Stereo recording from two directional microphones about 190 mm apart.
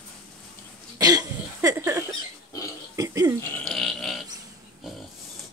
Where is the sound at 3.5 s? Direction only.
Centre (ahead or behind).